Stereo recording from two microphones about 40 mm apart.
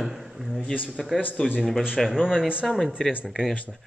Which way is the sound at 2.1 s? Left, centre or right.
Centre.